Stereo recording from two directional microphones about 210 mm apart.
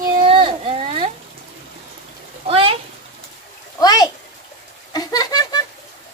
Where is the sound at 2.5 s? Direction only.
25° right (ahead or behind).